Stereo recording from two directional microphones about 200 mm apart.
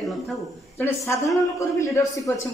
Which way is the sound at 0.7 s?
10° left (ahead or behind).